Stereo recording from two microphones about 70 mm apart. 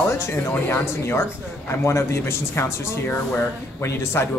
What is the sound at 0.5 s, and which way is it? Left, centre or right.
Speech, left.